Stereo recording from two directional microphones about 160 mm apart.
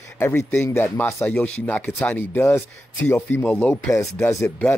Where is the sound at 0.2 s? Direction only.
15° left (ahead or behind).